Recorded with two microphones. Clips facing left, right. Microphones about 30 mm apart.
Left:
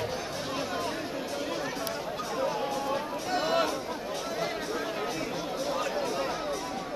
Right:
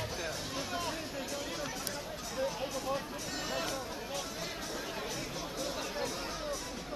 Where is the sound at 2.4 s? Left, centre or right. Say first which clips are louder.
Left 5 dB; left.